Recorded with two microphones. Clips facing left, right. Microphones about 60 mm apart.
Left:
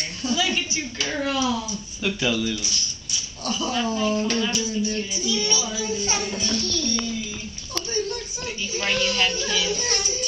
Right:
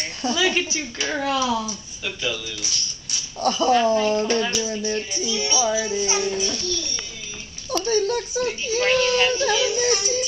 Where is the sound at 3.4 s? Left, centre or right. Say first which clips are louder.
Right 8 dB; right.